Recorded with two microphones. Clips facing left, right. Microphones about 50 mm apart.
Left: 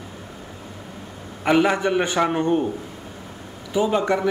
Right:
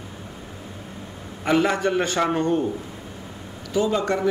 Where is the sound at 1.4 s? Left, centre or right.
Centre.